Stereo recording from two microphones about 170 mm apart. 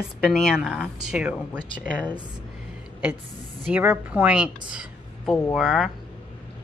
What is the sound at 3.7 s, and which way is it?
A woman's voice, 10° right (ahead or behind).